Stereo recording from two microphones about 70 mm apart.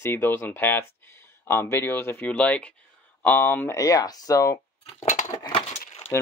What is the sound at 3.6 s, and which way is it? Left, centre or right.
Speech, left.